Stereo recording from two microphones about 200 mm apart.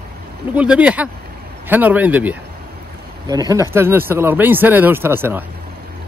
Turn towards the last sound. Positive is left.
turn(degrees=-10)  # may be behind; listen again after turning